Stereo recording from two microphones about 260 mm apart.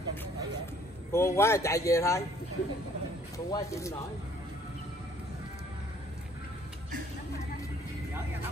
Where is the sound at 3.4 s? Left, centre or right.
Centre.